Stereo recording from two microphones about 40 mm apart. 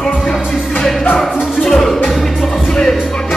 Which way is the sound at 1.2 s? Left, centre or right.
Centre.